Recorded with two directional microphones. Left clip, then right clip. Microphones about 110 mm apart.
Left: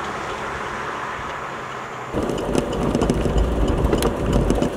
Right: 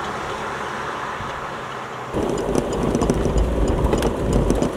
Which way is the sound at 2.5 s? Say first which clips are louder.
Even; centre (ahead or behind).